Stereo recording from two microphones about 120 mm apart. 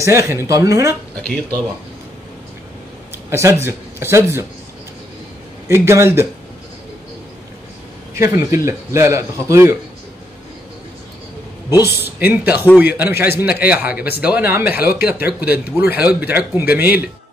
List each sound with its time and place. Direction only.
0.0 s a man's voice: 25° right (ahead or behind)
3.3 s a man's voice: 25° right (ahead or behind)
5.7 s a man's voice: 20° right (ahead or behind)
8.1 s a man's voice: 25° right (ahead or behind)
11.8 s speech: 15° right (ahead or behind)